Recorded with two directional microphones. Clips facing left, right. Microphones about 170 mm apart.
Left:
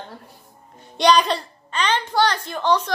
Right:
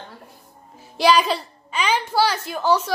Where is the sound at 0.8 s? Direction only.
5° right (ahead or behind).